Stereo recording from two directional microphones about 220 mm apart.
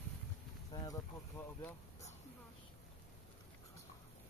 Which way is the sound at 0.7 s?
15° left (ahead or behind).